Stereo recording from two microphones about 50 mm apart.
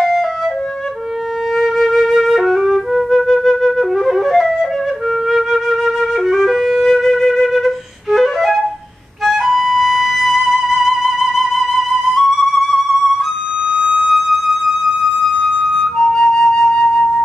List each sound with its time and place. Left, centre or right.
1.5 s flute: centre
9.2 s music: centre
13.7 s music: centre
14.0 s music: centre
15.7 s flute: centre